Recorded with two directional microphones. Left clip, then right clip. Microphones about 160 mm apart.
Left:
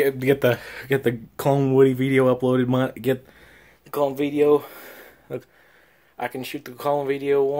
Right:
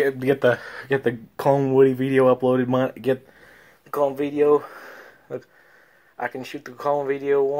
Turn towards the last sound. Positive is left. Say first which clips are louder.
# even
turn(degrees=30)  # may be behind; listen again after turning